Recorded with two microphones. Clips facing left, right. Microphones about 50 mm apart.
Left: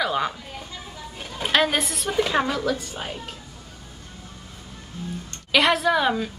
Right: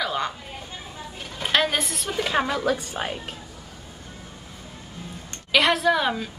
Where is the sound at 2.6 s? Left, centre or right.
Right.